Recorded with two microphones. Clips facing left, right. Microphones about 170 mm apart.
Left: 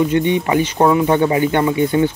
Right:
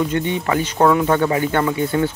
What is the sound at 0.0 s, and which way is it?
Speech, 15° left (ahead or behind).